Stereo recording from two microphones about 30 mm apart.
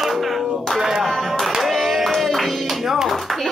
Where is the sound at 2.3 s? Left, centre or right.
Centre.